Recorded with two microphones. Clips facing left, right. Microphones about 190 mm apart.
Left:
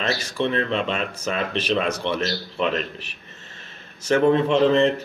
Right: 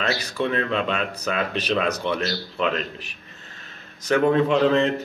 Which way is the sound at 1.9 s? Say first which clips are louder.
Even; 30° left (ahead or behind).